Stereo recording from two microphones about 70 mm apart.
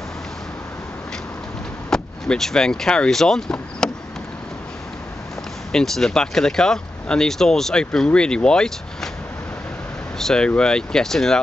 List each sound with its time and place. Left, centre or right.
1.9 s speech: centre
3.8 s a sound: centre
5.7 s speech: centre
10.1 s speech: centre